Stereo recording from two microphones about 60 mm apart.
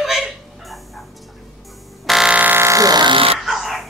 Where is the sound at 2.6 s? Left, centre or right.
Right.